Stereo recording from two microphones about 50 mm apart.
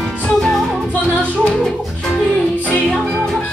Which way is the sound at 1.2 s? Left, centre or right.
Left.